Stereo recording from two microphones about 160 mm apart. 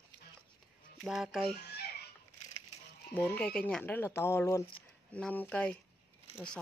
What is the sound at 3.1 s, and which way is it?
Speech, 10° left (ahead or behind).